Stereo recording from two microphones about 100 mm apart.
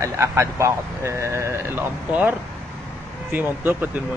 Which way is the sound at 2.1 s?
15° right (ahead or behind).